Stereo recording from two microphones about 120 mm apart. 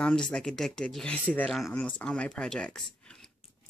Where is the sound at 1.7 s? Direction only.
10° left (ahead or behind).